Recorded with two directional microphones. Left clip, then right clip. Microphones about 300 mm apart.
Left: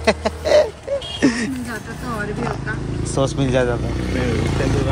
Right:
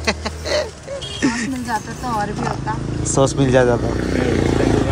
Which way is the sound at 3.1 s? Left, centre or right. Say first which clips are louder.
Right 4 dB; centre.